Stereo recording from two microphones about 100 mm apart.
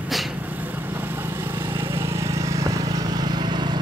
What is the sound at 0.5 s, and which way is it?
Vehicle, 15° right (ahead or behind).